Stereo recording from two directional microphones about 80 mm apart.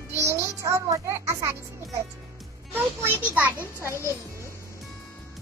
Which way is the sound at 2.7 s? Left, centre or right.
Right.